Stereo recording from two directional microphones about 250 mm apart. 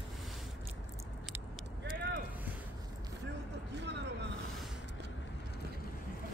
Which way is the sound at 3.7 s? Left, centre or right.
Right.